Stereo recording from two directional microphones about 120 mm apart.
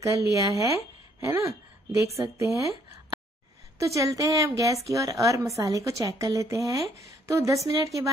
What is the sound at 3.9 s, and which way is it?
A woman's voice, 30° right (ahead or behind).